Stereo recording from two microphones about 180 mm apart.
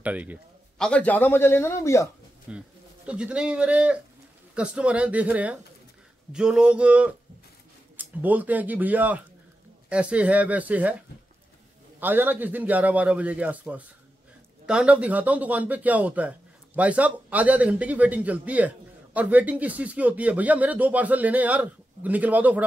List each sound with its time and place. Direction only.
0.0 s a man's voice: 10° right (ahead or behind)
0.7 s a man's voice: 5° left (ahead or behind)
2.5 s a man's voice: 5° right (ahead or behind)
6.3 s a sound: 5° right (ahead or behind)
8.0 s a man's voice: 10° right (ahead or behind)
12.0 s a man's voice: 10° right (ahead or behind)